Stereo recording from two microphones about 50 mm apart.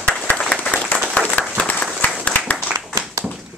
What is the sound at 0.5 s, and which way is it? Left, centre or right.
Applause, left.